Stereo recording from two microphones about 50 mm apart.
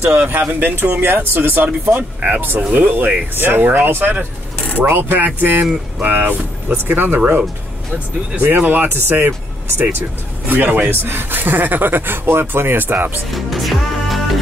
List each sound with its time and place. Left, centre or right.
0.0 s speech: right
3.3 s speech: right
5.2 s speech: right
8.4 s speech: right
13.3 s music: centre